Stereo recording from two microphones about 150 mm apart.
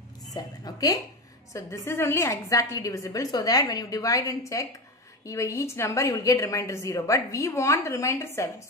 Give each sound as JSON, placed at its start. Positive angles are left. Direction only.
{"t": 0.3, "sound": "a woman's voice", "side_deg": 25}